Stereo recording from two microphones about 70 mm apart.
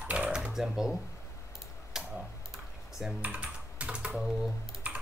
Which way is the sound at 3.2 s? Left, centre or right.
Centre.